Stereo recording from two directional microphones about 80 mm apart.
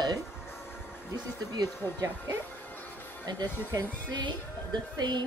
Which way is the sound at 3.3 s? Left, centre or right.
Right.